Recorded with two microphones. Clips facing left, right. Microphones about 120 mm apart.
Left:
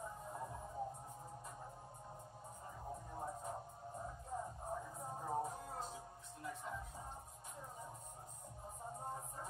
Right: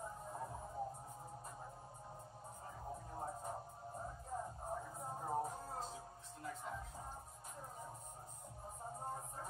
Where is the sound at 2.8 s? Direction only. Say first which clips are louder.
Even; centre (ahead or behind).